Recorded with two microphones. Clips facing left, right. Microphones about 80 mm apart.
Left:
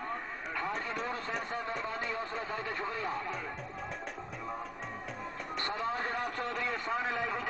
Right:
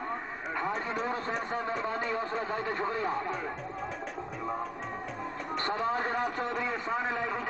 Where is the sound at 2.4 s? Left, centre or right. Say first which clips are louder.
Right 5 dB; right.